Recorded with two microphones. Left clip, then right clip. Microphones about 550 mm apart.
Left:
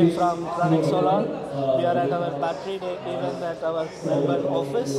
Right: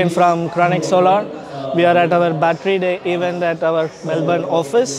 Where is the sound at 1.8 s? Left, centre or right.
Right.